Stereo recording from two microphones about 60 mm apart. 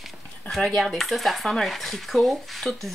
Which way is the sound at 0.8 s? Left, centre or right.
Centre.